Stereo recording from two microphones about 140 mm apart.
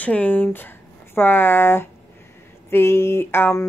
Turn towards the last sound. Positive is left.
turn(degrees=15)  # may be behind; listen again after turning